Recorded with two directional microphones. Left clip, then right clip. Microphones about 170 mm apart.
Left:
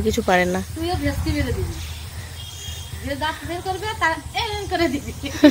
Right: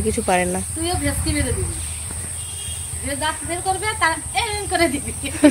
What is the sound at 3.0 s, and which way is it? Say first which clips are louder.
Speech: right 1 dB; centre (ahead or behind).